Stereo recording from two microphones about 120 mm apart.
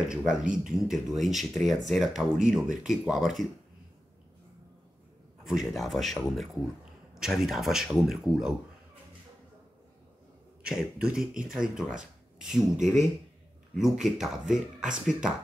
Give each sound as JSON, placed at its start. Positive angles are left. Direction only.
{"t": 0.1, "sound": "speech", "side_deg": -5}
{"t": 5.4, "sound": "speech", "side_deg": 0}
{"t": 10.6, "sound": "speech", "side_deg": -5}